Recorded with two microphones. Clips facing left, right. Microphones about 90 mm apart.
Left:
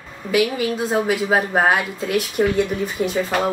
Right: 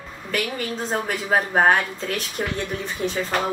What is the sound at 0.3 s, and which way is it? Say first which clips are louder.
A woman's voice: left 7 dB; 10° left (ahead or behind).